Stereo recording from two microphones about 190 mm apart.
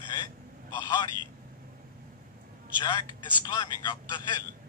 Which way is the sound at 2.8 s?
25° left (ahead or behind).